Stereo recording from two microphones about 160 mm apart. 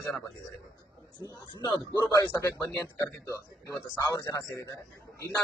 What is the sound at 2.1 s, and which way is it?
Speech, 20° left (ahead or behind).